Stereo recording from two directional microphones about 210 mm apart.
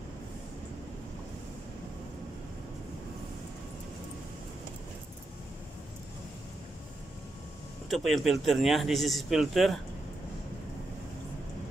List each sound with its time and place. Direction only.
7.9 s speech: centre (ahead or behind)